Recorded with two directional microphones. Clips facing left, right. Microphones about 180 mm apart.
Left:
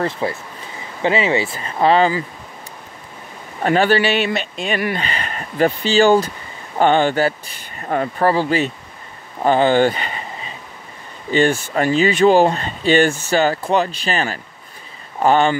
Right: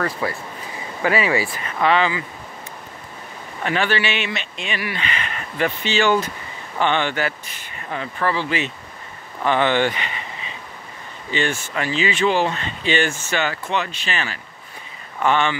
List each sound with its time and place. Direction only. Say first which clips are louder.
0.0 s speech: left 3 dB; 25° left (ahead or behind)
3.6 s speech: left 7 dB; 40° left (ahead or behind)
9.4 s a sound: left 5 dB; 40° left (ahead or behind)
11.2 s speech: left 7 dB; 40° left (ahead or behind)